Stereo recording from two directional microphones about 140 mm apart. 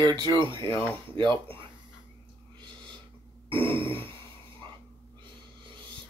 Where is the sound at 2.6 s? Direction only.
35° right (ahead or behind).